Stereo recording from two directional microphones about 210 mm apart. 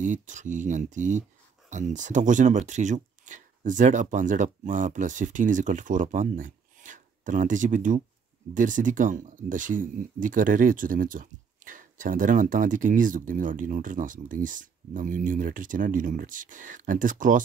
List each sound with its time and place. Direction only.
0.0 s speech: 35° right (ahead or behind)